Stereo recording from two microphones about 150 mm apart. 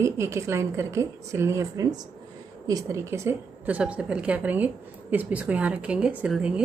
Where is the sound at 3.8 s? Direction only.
5° right (ahead or behind).